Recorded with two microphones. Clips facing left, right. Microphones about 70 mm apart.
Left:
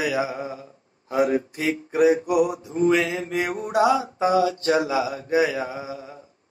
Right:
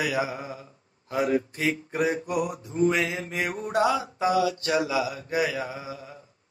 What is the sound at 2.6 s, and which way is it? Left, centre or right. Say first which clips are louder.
Mantra: left 3 dB; left.